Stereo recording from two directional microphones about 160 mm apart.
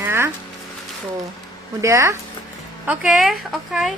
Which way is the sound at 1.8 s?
20° right (ahead or behind).